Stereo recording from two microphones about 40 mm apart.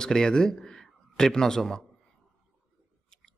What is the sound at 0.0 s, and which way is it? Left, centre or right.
A man's voice, centre.